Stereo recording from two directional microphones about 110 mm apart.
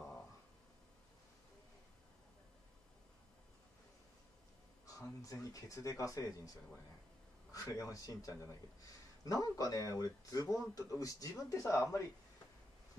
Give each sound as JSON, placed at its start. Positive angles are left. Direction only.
{"t": 4.8, "sound": "speech", "side_deg": 30}
{"t": 7.5, "sound": "speech", "side_deg": 30}